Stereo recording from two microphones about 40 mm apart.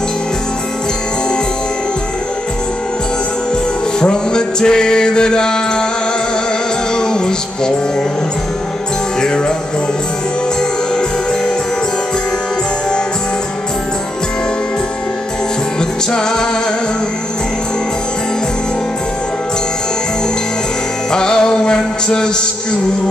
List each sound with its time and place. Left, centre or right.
4.0 s music: left
7.0 s music: centre
16.1 s music: centre
21.1 s music: centre